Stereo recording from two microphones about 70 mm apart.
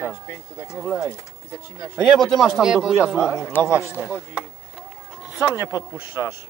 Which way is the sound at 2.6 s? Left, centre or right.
Centre.